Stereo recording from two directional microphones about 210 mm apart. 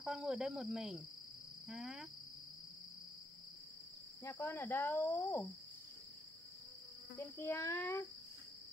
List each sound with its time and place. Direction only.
0.0 s speech: 5° right (ahead or behind)
4.2 s speech: 10° left (ahead or behind)
7.2 s speech: 10° left (ahead or behind)